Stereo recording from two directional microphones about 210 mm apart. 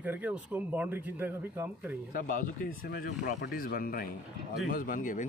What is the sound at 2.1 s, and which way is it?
Speech, 40° left (ahead or behind).